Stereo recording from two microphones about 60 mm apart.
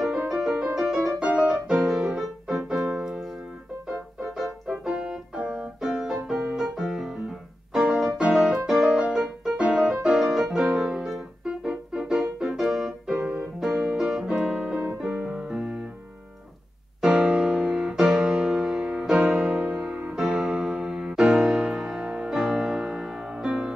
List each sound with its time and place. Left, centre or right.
0.3 s music: centre
4.6 s keyboard: centre
5.9 s music: centre
7.7 s piano: centre
8.2 s music: centre
13.2 s keyboard: right
13.6 s music: centre
15.0 s keyboard: centre
15.3 s music: centre
17.0 s piano: centre
19.3 s music: centre
20.2 s music: centre